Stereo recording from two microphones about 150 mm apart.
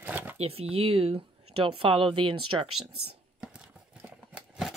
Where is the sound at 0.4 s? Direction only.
40° right (ahead or behind).